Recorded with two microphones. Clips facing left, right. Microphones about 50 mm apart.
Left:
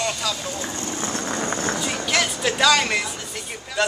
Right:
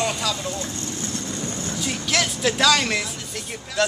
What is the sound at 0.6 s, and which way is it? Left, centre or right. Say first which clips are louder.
Vehicle: left 2 dB; left.